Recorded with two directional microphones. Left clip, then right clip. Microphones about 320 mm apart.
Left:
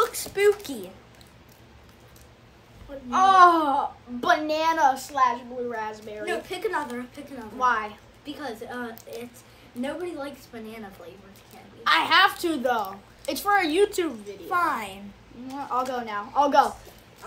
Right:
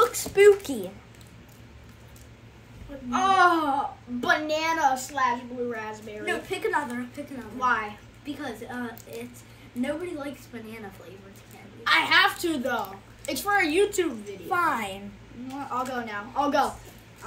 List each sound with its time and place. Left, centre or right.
0.0 s a sound: centre
3.1 s a woman's voice: centre
14.5 s a woman's voice: centre
15.4 s a woman's voice: centre